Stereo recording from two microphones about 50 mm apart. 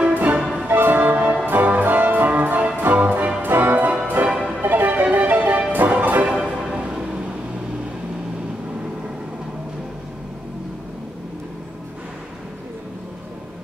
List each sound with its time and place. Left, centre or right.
0.1 s music: right
0.7 s music: right
6.2 s music: centre